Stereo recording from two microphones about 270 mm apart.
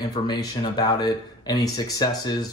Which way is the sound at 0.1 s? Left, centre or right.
Centre.